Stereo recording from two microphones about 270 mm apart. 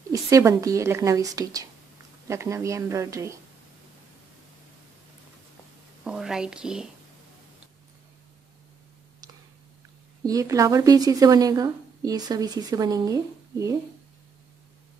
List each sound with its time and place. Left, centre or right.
0.1 s speech: centre
6.0 s speech: centre
10.2 s speech: centre